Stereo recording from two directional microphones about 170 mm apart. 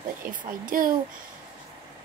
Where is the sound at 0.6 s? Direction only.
55° right (ahead or behind).